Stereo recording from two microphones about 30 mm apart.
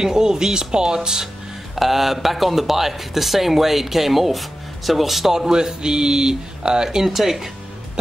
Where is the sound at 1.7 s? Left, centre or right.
Centre.